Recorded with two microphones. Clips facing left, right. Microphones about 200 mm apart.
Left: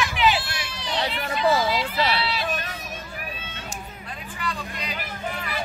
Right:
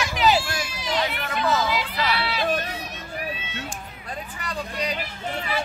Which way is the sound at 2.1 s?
50° right (ahead or behind).